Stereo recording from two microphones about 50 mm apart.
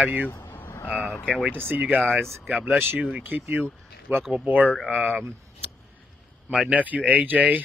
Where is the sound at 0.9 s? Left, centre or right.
Right.